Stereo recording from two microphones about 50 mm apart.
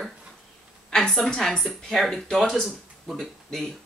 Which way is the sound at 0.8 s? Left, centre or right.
Centre.